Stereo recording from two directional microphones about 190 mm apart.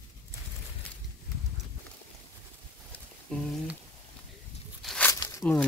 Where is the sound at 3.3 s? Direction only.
5° left (ahead or behind).